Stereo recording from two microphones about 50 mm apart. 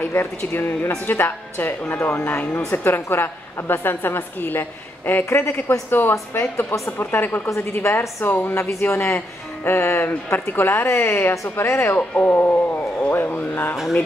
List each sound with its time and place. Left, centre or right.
0.0 s a woman's voice: left
5.3 s a man's voice: left
5.9 s a woman's voice: left
6.3 s a man's voice: left
6.9 s a woman's voice: left
7.8 s a woman's voice: left
8.5 s speech: left
8.8 s a man's voice: left
11.9 s speech: left